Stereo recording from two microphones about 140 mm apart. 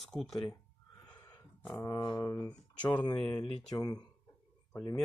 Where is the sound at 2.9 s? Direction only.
30° left (ahead or behind).